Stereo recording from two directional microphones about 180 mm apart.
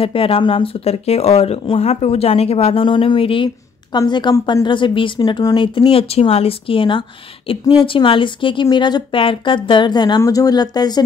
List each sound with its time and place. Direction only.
0.0 s a woman's voice: 30° left (ahead or behind)